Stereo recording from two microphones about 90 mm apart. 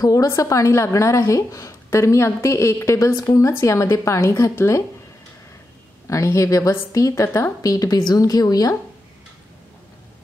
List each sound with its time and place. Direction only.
0.0 s a woman's voice: 40° left (ahead or behind)
6.0 s a woman's voice: 35° left (ahead or behind)